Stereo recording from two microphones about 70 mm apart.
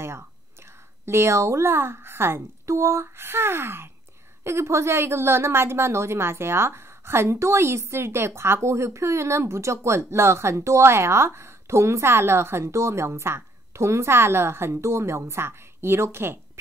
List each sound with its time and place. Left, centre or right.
1.0 s speech: right